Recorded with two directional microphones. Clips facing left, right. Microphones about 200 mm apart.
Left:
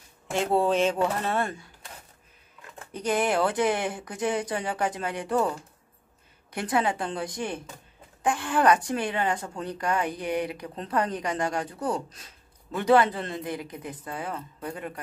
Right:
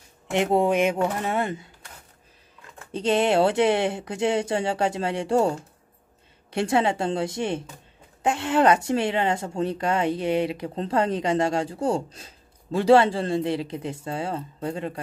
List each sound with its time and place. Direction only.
0.3 s speech: 20° right (ahead or behind)
2.9 s speech: 25° right (ahead or behind)